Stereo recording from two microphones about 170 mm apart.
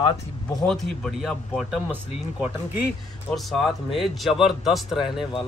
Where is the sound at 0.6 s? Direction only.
Centre (ahead or behind).